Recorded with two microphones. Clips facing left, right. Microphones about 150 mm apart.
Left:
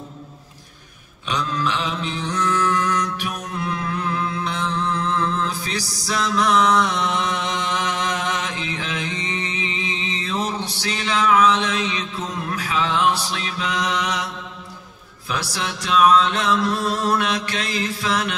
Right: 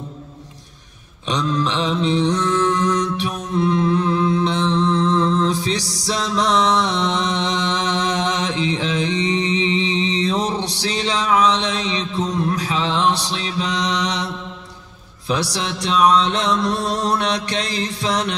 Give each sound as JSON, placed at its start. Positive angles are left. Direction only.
{"t": 1.2, "sound": "mantra", "side_deg": -30}